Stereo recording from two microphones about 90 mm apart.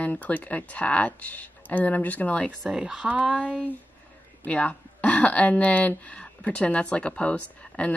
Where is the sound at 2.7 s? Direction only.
10° right (ahead or behind).